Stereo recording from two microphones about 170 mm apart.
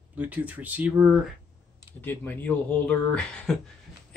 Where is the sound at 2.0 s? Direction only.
10° left (ahead or behind).